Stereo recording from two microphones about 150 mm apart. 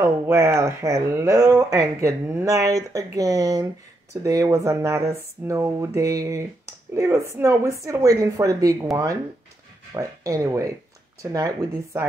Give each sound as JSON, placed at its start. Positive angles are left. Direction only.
{"t": 0.0, "sound": "speech", "side_deg": -15}